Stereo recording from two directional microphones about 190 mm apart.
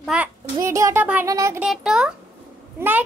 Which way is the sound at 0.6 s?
15° right (ahead or behind).